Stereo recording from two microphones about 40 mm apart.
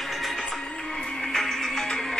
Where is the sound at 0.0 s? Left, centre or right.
Centre.